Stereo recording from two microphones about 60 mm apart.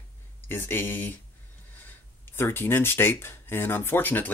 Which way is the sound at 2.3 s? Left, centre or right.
Left.